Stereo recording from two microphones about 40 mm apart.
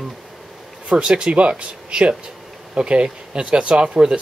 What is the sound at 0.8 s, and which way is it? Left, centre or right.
Speech, right.